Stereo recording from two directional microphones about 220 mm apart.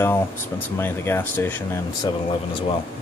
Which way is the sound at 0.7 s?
10° left (ahead or behind).